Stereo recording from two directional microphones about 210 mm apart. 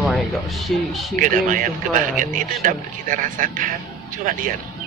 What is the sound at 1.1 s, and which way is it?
A man's voice, 40° right (ahead or behind).